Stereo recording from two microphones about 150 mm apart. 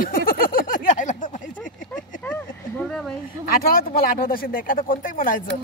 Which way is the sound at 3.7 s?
80° left.